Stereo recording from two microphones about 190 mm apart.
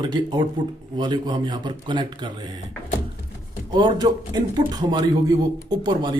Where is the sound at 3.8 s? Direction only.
20° right (ahead or behind).